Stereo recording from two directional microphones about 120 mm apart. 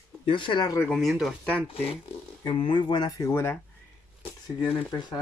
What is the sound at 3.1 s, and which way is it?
Speech, 25° left (ahead or behind).